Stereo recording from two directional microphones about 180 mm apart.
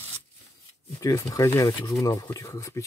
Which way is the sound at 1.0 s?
20° left (ahead or behind).